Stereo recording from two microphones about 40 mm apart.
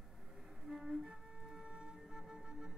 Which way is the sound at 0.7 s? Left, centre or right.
Centre.